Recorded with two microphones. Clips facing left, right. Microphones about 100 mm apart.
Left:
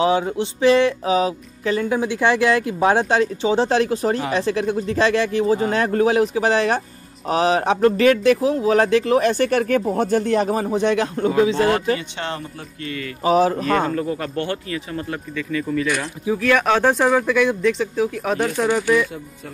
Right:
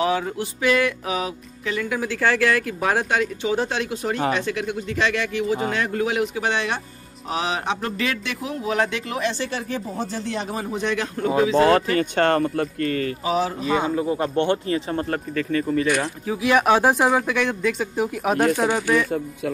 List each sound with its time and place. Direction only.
0.0 s music: 25° left (ahead or behind)
4.3 s speech: 35° left (ahead or behind)
9.3 s speech: 55° left (ahead or behind); by 11.3 s 35° left (ahead or behind)
11.5 s speech: 35° right (ahead or behind)
12.0 s speech: 55° right (ahead or behind)
13.2 s speech: 45° left (ahead or behind)
13.7 s speech: 10° right (ahead or behind); by 16.1 s 35° right (ahead or behind)
16.3 s speech: 15° right (ahead or behind)
17.4 s speech: centre (ahead or behind)
18.7 s speech: 15° right (ahead or behind)
19.0 s speech: 55° right (ahead or behind)